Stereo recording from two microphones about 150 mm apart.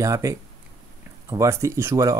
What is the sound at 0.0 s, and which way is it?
Speech, 20° right (ahead or behind).